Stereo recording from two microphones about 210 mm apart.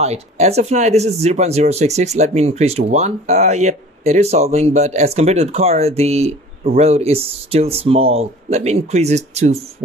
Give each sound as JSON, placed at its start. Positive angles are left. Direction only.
{"t": 0.0, "sound": "speech", "side_deg": -30}